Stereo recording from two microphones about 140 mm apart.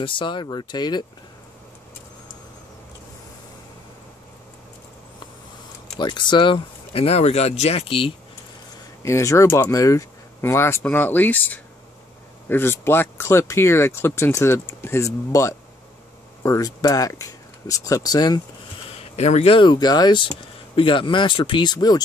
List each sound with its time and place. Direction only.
0.0 s speech: 35° left (ahead or behind)
5.9 s speech: 35° left (ahead or behind)
9.0 s speech: 20° left (ahead or behind)
18.9 s speech: 50° left (ahead or behind); by 22.0 s 30° left (ahead or behind)